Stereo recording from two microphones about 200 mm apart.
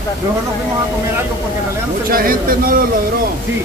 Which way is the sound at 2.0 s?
45° right (ahead or behind).